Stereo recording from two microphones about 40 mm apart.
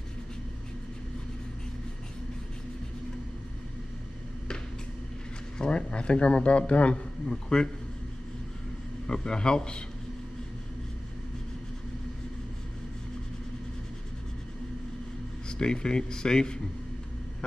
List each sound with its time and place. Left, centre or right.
5.6 s a man's voice: left
9.0 s a man's voice: centre
15.4 s a man's voice: centre